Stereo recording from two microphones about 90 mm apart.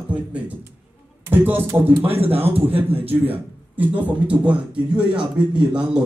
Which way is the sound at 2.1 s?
90° right.